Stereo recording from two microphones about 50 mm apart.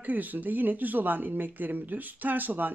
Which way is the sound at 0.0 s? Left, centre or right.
Right.